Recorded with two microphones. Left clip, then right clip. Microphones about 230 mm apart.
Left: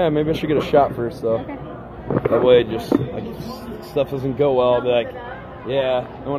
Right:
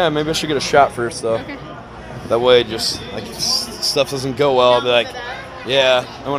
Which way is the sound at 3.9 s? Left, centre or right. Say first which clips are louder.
Right 1 dB; right.